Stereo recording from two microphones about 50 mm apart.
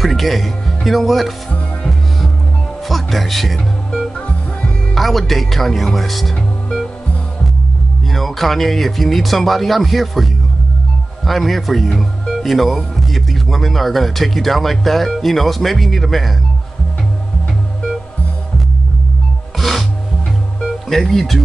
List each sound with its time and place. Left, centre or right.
0.0 s speech: centre
2.9 s speech: centre
4.3 s music: left
4.9 s speech: centre
8.1 s speech: centre
11.9 s music: centre
12.4 s speech: centre
19.6 s filing: centre
20.6 s music: centre